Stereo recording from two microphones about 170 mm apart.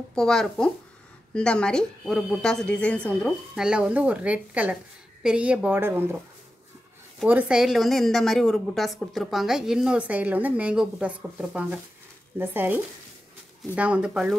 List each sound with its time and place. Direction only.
0.1 s a woman's voice: 5° left (ahead or behind); by 6.0 s 15° right (ahead or behind)
7.2 s a woman's voice: 5° right (ahead or behind)